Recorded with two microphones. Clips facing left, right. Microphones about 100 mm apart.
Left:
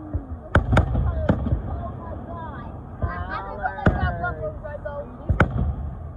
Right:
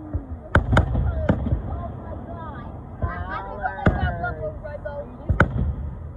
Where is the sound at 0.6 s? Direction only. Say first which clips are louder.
Even; 20° left (ahead or behind).